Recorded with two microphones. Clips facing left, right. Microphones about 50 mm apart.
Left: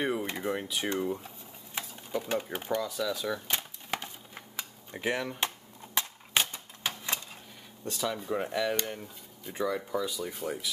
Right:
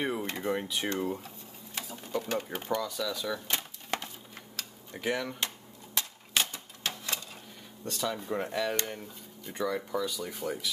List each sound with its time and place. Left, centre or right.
0.0 s speech: centre
1.8 s a sound: centre
2.1 s speech: centre
4.6 s a sound: centre
5.9 s typewriter: left
7.8 s speech: centre